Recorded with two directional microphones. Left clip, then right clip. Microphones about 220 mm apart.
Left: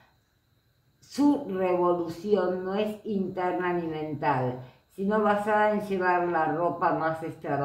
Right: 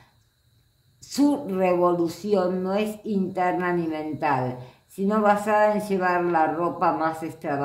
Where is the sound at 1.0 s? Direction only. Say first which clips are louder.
Right 2 dB; 50° right (ahead or behind).